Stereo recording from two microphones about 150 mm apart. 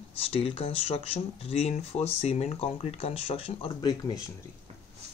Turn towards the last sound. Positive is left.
turn(degrees=30)  # may be behind; listen again after turning